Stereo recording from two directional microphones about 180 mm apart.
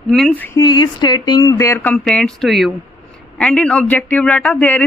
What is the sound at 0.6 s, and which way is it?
A man's voice, 25° left (ahead or behind).